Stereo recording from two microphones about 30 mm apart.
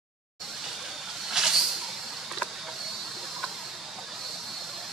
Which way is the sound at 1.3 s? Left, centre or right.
Centre.